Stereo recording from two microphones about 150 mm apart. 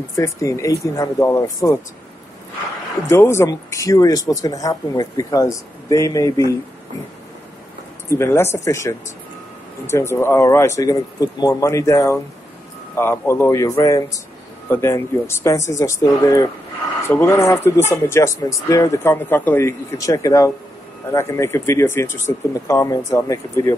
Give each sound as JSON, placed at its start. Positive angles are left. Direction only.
{"t": 0.1, "sound": "speech", "side_deg": 20}
{"t": 3.1, "sound": "speech", "side_deg": 20}
{"t": 8.1, "sound": "speech", "side_deg": 15}